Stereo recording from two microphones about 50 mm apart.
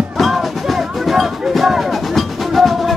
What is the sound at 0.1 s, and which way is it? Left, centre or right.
Music, centre.